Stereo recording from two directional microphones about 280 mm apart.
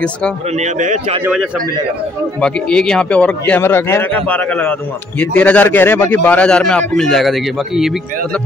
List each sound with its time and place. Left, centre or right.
0.6 s a man's voice: right
1.2 s a man's voice: centre